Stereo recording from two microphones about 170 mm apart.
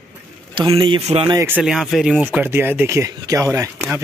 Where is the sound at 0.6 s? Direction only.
30° right (ahead or behind).